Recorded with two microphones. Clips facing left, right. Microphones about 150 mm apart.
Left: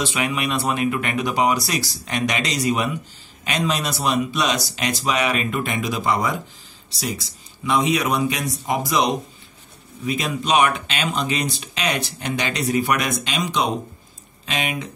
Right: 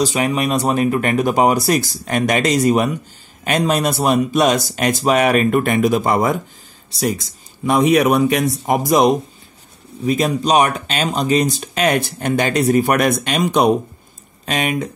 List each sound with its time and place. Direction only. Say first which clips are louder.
0.0 s speech: right 6 dB; 40° right (ahead or behind)